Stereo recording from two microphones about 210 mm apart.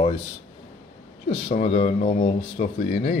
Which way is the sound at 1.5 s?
30° left (ahead or behind).